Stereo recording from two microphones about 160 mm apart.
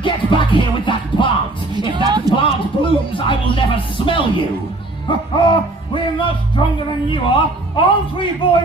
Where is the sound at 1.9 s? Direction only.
30° right (ahead or behind).